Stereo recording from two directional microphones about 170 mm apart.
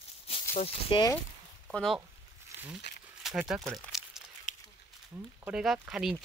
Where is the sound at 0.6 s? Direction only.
30° left (ahead or behind).